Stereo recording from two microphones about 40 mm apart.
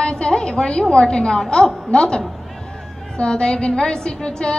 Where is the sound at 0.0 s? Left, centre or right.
Centre.